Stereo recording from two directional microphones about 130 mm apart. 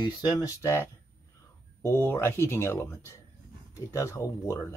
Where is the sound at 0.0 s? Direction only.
30° left (ahead or behind).